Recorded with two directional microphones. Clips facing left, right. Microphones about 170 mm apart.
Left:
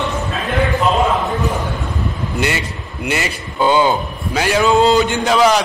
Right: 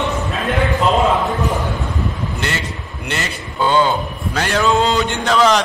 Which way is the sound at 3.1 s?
10° left (ahead or behind).